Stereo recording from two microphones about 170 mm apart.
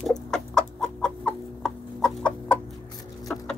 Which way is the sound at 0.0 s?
5° left (ahead or behind).